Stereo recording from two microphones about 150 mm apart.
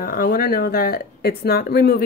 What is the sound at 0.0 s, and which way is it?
Speech, 70° left (ahead or behind).